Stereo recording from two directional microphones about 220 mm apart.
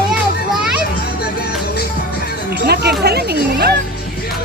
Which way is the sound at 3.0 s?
45° right (ahead or behind).